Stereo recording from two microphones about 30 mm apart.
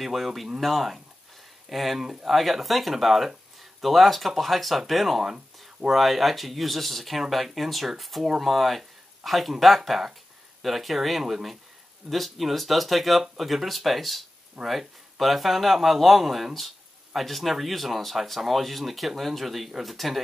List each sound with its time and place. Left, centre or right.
0.0 s speech: centre